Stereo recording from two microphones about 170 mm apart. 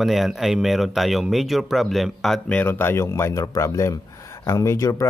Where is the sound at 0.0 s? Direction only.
Centre (ahead or behind).